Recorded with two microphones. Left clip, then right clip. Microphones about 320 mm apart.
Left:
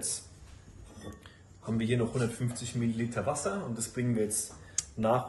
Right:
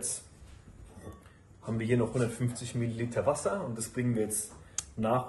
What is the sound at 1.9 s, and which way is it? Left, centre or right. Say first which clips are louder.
Speech: right 3 dB; centre.